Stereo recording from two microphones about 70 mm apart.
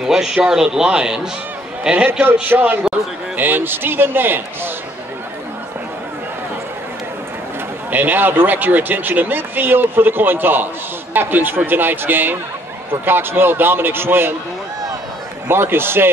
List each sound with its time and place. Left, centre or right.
0.0 s speech: centre
2.5 s speech: right
7.9 s speech: right
15.4 s speech: right